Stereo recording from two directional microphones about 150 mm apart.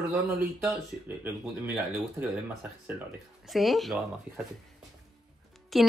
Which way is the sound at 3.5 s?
Centre (ahead or behind).